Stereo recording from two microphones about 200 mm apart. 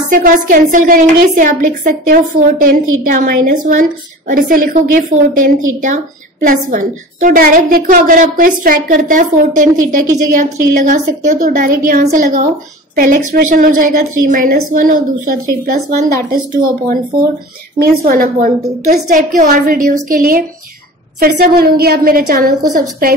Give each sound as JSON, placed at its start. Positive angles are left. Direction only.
{"t": 0.1, "sound": "a woman's voice", "side_deg": -40}
{"t": 17.7, "sound": "a woman's voice", "side_deg": -45}